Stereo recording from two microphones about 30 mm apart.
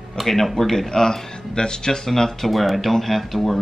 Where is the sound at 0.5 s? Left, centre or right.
Centre.